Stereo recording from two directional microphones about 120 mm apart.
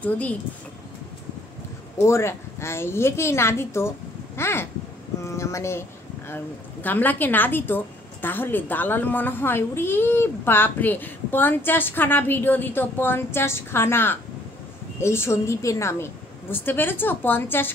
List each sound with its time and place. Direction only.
0.0 s speech: 10° left (ahead or behind)
2.0 s a woman's voice: 20° left (ahead or behind)